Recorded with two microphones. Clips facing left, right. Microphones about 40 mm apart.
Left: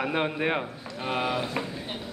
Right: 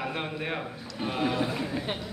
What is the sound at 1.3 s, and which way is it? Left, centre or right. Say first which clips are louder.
Speech: even; centre.